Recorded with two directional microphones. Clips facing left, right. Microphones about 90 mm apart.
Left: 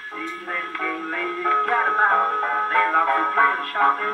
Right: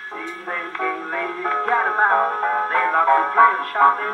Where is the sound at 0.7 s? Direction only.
15° right (ahead or behind).